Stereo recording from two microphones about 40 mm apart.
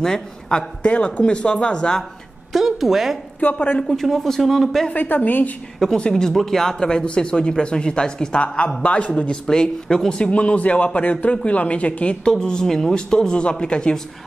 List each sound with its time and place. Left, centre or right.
0.0 s a woman's voice: centre
0.8 s speech: left
2.5 s a woman's voice: centre
3.3 s speech: left
3.8 s speech: centre
4.9 s a woman's voice: left
5.9 s speech: left
6.3 s speech: centre
6.8 s speech: left
8.8 s speech: left; by 10.2 s centre
10.2 s speech: left
12.3 s speech: centre